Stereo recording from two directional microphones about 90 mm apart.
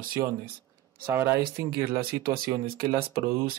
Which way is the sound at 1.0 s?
25° right (ahead or behind).